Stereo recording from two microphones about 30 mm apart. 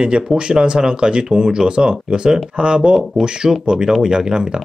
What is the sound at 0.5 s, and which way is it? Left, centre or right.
Speech, right.